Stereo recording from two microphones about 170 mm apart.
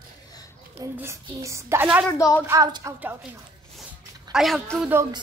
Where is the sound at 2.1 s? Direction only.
15° left (ahead or behind).